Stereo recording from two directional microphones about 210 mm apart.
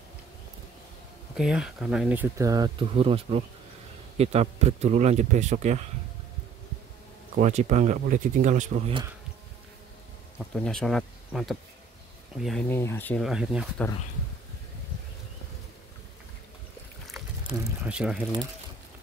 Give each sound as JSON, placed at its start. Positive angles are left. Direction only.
{"t": 1.3, "sound": "a man's voice", "side_deg": -5}
{"t": 7.3, "sound": "a man's voice", "side_deg": -35}
{"t": 10.5, "sound": "speech", "side_deg": 5}
{"t": 17.1, "sound": "speech", "side_deg": -5}